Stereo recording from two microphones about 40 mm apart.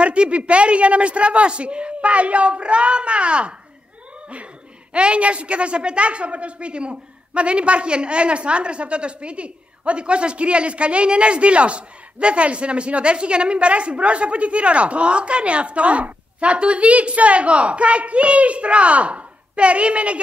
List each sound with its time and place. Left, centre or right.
0.0 s a woman's voice: right
4.9 s a woman's voice: right